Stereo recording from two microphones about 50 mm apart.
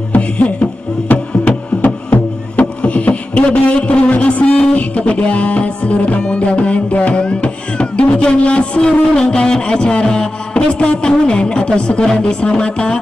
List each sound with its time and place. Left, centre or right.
0.1 s music: left